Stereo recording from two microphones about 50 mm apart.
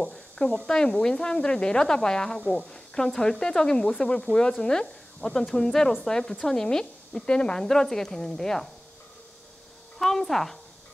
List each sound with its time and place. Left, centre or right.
0.0 s a sound: centre
0.7 s a woman's voice: centre
9.9 s a woman's voice: centre